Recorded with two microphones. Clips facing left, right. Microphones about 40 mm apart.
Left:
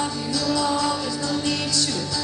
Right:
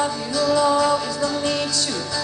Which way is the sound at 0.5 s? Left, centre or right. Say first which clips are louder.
Right 6 dB; right.